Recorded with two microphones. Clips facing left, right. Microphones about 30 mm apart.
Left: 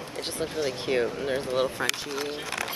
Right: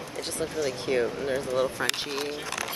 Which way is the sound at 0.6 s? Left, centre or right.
Centre.